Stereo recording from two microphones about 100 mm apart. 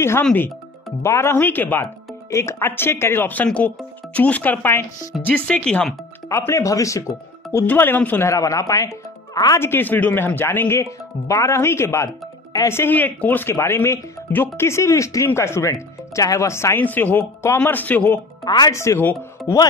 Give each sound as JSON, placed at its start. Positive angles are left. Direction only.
{"t": 0.2, "sound": "speech", "side_deg": 15}
{"t": 1.0, "sound": "speech", "side_deg": 25}
{"t": 6.2, "sound": "speech", "side_deg": 30}
{"t": 8.3, "sound": "speech", "side_deg": 35}
{"t": 9.6, "sound": "speech", "side_deg": 20}
{"t": 18.4, "sound": "speech", "side_deg": 45}
{"t": 18.7, "sound": "speech", "side_deg": 30}